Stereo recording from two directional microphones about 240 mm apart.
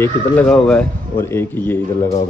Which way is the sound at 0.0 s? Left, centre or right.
Centre.